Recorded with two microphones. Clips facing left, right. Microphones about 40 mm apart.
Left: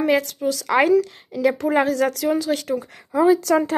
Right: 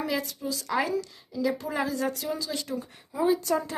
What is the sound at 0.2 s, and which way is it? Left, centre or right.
A woman's voice, left.